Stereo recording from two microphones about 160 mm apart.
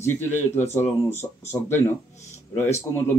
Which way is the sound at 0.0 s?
10° left (ahead or behind).